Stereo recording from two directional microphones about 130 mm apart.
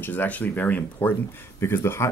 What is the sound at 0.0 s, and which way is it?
Speech, 15° left (ahead or behind).